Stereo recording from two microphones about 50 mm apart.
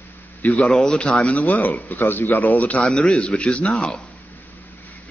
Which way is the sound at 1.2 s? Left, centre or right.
Left.